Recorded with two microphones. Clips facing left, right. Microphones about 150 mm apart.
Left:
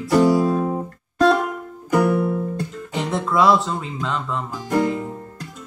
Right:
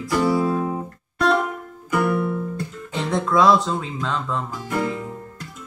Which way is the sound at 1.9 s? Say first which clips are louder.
Left 3 dB; 35° left (ahead or behind).